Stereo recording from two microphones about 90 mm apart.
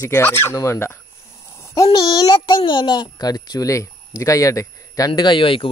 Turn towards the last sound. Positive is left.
turn(degrees=75)  # may be behind; listen again after turning